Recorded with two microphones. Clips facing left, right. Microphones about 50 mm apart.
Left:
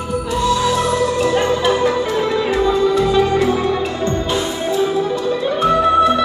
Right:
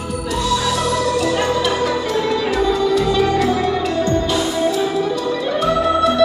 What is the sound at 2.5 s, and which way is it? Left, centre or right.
Music, left.